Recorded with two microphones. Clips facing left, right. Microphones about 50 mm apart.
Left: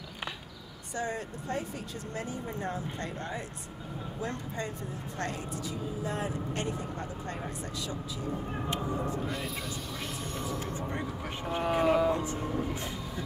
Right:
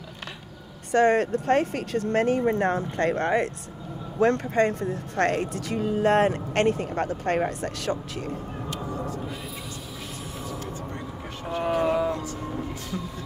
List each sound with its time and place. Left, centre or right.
0.9 s speech: right
8.9 s a sound: centre
11.8 s music: centre
12.1 s speech: left
12.4 s train: centre